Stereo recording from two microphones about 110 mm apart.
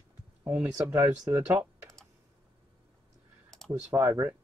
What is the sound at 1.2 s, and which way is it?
Speech, 25° right (ahead or behind).